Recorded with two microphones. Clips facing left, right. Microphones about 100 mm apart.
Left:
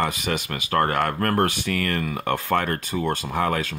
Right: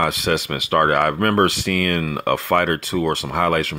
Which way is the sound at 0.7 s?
60° right (ahead or behind).